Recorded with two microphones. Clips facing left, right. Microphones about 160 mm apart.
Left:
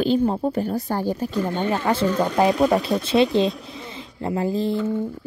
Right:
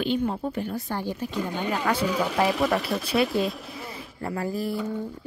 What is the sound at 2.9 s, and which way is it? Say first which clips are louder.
Speech: left 6 dB; 20° left (ahead or behind).